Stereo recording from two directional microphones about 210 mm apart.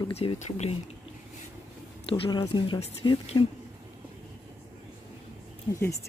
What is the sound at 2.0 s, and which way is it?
Speech, 25° left (ahead or behind).